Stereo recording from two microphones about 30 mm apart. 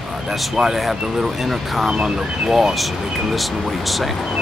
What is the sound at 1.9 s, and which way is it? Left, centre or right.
Speech, right.